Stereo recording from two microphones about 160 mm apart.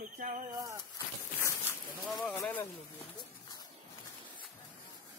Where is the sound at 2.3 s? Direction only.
10° left (ahead or behind).